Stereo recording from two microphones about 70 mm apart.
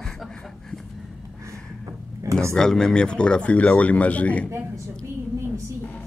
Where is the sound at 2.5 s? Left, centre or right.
Centre.